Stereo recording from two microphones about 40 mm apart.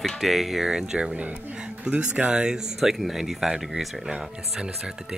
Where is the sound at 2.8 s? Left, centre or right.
Centre.